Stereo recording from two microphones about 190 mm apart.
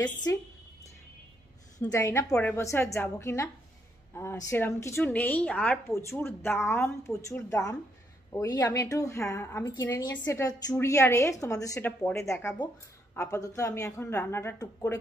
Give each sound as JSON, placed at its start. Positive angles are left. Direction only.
{"t": 1.8, "sound": "a woman's voice", "side_deg": 15}